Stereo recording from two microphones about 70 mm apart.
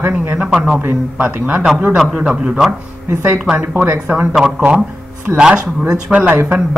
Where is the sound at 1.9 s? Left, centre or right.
Centre.